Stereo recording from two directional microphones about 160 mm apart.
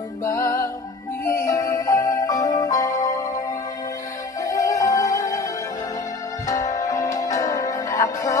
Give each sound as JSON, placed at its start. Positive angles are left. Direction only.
{"t": 0.3, "sound": "music", "side_deg": 20}